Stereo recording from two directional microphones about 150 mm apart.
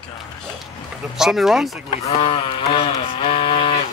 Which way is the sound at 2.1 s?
40° left (ahead or behind).